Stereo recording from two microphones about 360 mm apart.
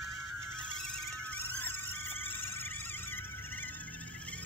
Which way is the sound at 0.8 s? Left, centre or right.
Centre.